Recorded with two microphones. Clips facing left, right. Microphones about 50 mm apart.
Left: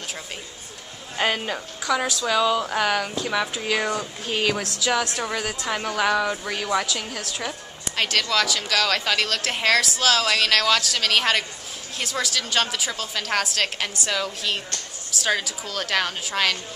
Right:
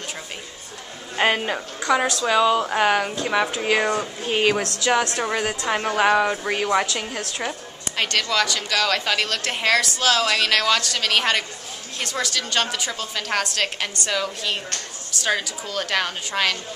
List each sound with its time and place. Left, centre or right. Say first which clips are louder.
1.1 s a man's voice: right 3 dB; centre
7.9 s a woman's voice: even; centre